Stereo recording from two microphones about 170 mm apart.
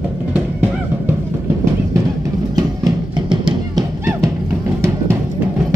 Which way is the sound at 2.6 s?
25° right (ahead or behind).